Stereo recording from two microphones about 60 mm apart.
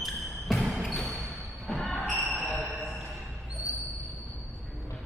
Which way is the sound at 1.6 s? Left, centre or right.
Centre.